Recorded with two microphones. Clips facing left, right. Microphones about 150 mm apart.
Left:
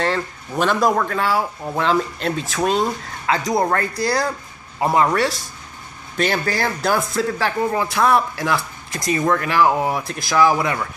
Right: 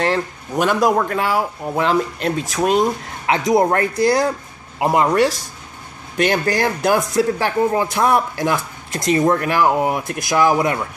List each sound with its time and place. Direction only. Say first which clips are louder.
0.0 s speech: right 2 dB; 15° right (ahead or behind)
9.5 s speech: right 1 dB; 10° right (ahead or behind)